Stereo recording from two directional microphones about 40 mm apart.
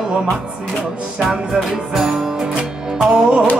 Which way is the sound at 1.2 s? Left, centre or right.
Centre.